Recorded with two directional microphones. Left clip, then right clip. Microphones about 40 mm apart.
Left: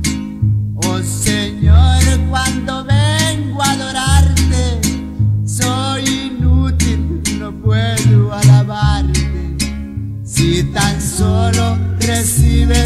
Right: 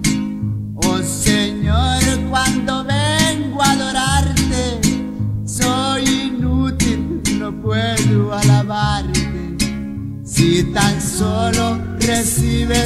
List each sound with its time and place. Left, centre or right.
0.0 s music: right